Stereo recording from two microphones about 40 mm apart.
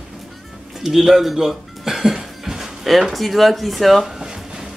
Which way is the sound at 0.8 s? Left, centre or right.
Centre.